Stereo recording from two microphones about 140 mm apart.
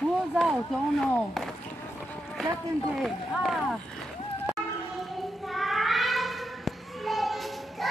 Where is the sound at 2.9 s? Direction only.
5° right (ahead or behind).